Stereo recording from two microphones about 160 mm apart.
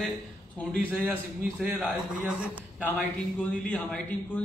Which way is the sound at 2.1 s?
5° right (ahead or behind).